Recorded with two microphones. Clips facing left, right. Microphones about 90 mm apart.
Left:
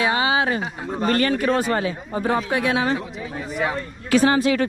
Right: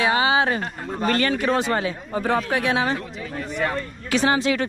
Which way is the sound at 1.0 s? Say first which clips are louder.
Left 1 dB; 35° left (ahead or behind).